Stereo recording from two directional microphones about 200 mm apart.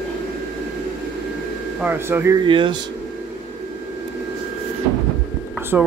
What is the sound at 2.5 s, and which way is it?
Speech, 25° right (ahead or behind).